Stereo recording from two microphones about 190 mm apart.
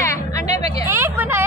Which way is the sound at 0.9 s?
10° right (ahead or behind).